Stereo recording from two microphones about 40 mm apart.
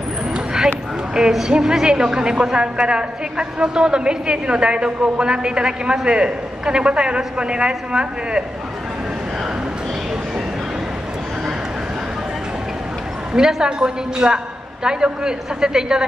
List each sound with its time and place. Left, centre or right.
0.3 s a sound: centre
1.2 s a woman's voice: centre
13.3 s a woman's voice: centre